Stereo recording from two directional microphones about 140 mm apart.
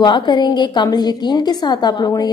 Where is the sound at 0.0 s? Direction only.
35° left (ahead or behind).